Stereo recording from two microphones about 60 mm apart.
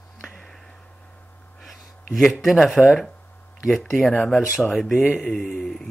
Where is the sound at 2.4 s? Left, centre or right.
Centre.